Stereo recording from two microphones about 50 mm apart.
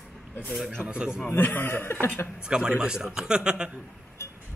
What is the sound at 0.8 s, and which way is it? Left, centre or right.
Speech, centre.